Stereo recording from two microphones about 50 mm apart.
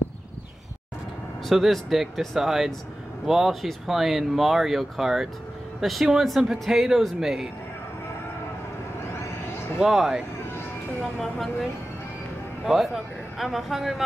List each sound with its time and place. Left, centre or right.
1.5 s speech: centre
9.1 s vehicle: left
9.8 s speech: centre
12.6 s speech: centre